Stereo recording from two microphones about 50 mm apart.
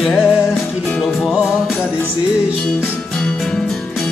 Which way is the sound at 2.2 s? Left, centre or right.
Centre.